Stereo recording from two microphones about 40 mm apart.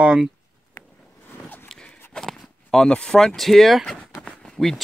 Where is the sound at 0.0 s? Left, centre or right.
Right.